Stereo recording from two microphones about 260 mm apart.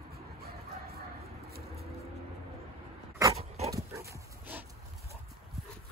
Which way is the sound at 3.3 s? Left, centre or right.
Right.